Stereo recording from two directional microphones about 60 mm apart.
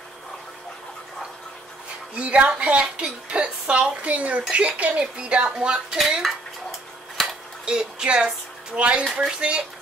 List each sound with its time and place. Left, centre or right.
2.1 s a woman's voice: centre
7.2 s a sound: centre
7.6 s speech: centre